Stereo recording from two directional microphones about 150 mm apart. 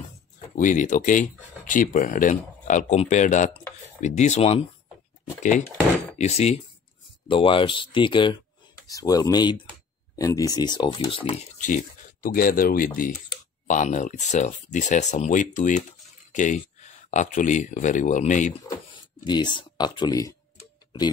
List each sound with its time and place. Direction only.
0.6 s speech: 55° left (ahead or behind)
6.1 s speech: 45° left (ahead or behind)
11.6 s speech: 60° left (ahead or behind)
13.7 s speech: 55° left (ahead or behind)
18.9 s speech: 30° left (ahead or behind)